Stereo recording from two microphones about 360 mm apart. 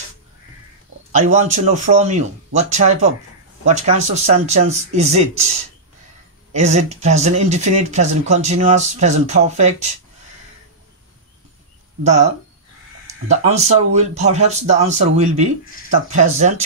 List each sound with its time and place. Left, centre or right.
1.1 s speech: centre
6.5 s speech: centre
12.0 s speech: centre
13.3 s speech: centre